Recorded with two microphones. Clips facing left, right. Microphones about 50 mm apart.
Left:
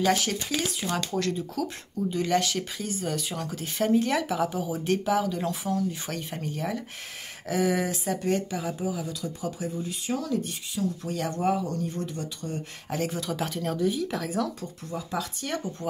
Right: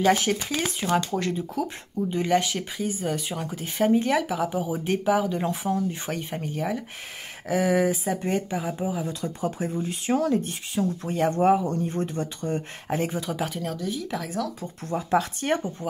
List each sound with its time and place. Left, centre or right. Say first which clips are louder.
0.0 s speech: right 3 dB; centre
8.7 s speech: right 2 dB; right
13.0 s speech: left 1 dB; centre
13.7 s speech: left 3 dB; centre
14.9 s speech: right 8 dB; right